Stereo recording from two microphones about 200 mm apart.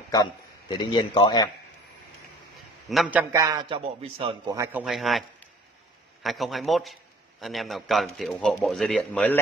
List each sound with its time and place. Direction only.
0.1 s a man's voice: 20° left (ahead or behind)
2.9 s a man's voice: 5° right (ahead or behind); by 4.6 s 25° right (ahead or behind)
4.8 s a man's voice: centre (ahead or behind)
6.2 s a man's voice: centre (ahead or behind)